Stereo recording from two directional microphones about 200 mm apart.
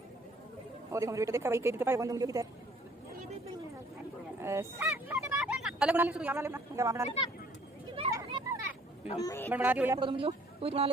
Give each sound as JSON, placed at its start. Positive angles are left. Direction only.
{"t": 0.9, "sound": "speech", "side_deg": -15}
{"t": 4.4, "sound": "speech", "side_deg": -15}
{"t": 8.1, "sound": "children playing", "side_deg": -20}
{"t": 9.2, "sound": "a woman's voice", "side_deg": 15}
{"t": 9.5, "sound": "speech", "side_deg": -10}
{"t": 9.9, "sound": "a man's voice", "side_deg": -25}